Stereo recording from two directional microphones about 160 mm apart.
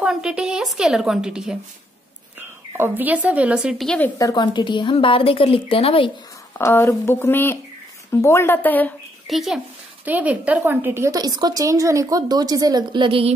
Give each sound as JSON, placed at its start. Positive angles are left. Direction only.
{"t": 0.0, "sound": "a woman's voice", "side_deg": -5}
{"t": 2.8, "sound": "a woman's voice", "side_deg": -10}
{"t": 4.2, "sound": "a woman's voice", "side_deg": 25}
{"t": 6.6, "sound": "speech", "side_deg": 20}
{"t": 9.3, "sound": "a woman's voice", "side_deg": 0}